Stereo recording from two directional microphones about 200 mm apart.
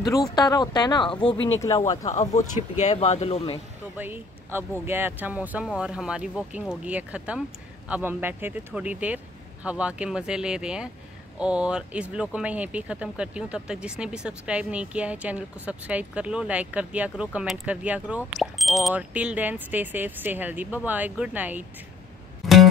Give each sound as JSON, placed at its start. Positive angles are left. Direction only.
{"t": 0.0, "sound": "speech", "side_deg": 20}
{"t": 2.0, "sound": "speech", "side_deg": 35}
{"t": 4.0, "sound": "speech", "side_deg": -10}
{"t": 22.4, "sound": "music", "side_deg": 0}